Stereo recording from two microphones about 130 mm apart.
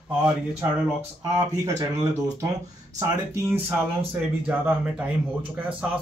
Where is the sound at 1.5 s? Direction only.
25° right (ahead or behind).